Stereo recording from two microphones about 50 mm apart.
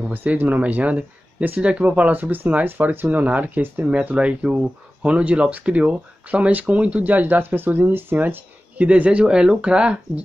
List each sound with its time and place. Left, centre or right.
0.1 s speech: right
8.7 s speech: right